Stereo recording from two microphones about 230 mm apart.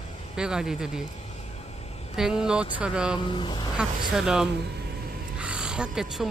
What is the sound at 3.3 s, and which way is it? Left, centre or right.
Speech, centre.